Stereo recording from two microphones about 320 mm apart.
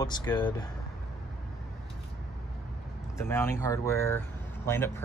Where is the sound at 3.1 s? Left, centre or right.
Centre.